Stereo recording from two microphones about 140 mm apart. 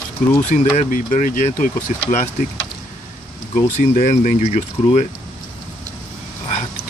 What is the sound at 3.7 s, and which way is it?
Speech, 65° left (ahead or behind).